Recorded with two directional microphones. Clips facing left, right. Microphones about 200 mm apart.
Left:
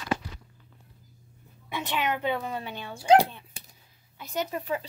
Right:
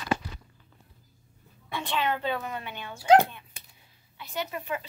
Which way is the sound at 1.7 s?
15° left (ahead or behind).